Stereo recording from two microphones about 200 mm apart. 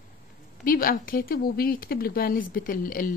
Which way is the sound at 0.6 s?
45° left (ahead or behind).